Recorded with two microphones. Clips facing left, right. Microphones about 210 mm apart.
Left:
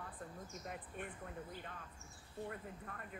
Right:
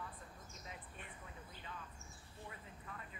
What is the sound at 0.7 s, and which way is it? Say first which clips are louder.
Speech: left 7 dB; 50° left (ahead or behind).